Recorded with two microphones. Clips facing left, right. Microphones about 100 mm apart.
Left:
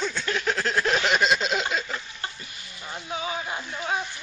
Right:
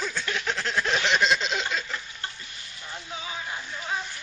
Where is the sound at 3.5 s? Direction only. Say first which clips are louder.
Left 3 dB; 20° left (ahead or behind).